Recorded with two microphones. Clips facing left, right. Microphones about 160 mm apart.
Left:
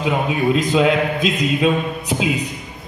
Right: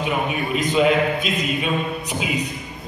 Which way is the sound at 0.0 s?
90° left.